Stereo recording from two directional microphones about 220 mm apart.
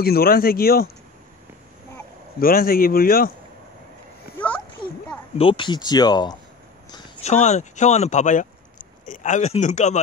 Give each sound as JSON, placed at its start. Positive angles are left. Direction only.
{"t": 0.0, "sound": "a man's voice", "side_deg": 45}
{"t": 2.3, "sound": "a man's voice", "side_deg": 40}
{"t": 5.4, "sound": "speech", "side_deg": 25}
{"t": 6.9, "sound": "speech", "side_deg": 30}